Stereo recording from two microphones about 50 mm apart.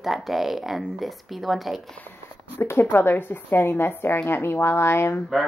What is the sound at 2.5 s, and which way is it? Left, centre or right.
A woman's voice, left.